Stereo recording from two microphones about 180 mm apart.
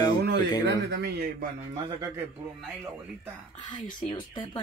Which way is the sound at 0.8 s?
70° right (ahead or behind).